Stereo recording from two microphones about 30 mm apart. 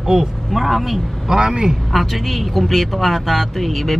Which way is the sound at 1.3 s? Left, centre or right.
Right.